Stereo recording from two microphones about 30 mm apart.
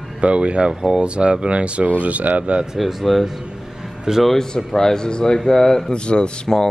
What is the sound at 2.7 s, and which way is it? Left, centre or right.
Speech, centre.